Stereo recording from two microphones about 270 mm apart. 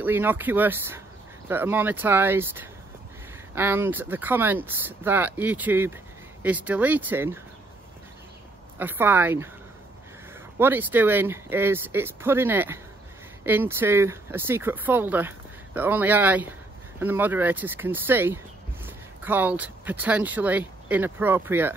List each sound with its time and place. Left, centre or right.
0.0 s speech: centre
8.7 s speech: centre
10.6 s speech: centre